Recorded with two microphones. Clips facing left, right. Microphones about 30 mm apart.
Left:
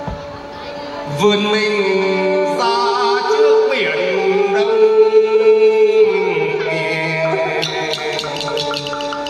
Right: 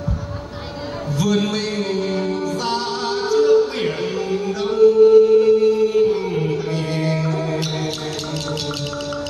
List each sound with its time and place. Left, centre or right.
1.2 s music: left